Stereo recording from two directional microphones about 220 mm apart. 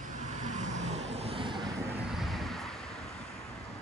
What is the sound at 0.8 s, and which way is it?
Vehicle, 30° right (ahead or behind).